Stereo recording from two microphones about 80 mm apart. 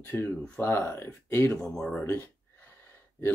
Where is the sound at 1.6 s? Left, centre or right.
Centre.